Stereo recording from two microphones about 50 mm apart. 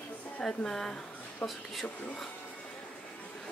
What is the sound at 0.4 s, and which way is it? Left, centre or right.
Speech, centre.